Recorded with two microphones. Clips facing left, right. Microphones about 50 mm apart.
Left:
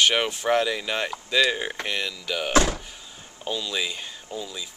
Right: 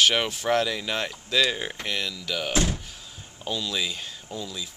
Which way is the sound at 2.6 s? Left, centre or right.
Left.